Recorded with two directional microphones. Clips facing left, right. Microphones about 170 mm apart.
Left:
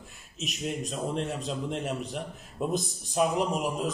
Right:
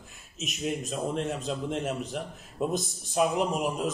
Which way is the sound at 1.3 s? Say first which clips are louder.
Right 1 dB; centre (ahead or behind).